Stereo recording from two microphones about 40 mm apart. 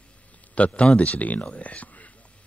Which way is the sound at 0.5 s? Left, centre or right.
Left.